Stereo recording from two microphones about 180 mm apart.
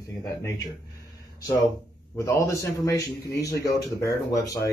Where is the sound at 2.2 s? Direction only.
15° left (ahead or behind).